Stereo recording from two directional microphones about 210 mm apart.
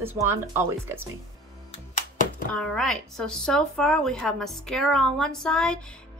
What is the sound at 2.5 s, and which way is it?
Speech, centre (ahead or behind).